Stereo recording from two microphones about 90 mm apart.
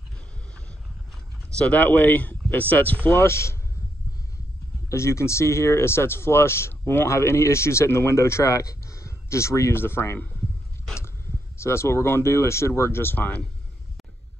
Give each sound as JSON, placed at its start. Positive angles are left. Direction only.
{"t": 1.5, "sound": "speech", "side_deg": 15}
{"t": 3.2, "sound": "speech", "side_deg": 30}
{"t": 4.8, "sound": "speech", "side_deg": 30}
{"t": 11.5, "sound": "speech", "side_deg": 30}